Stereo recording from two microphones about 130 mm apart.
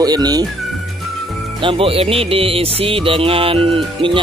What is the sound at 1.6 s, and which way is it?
Music, 45° right (ahead or behind).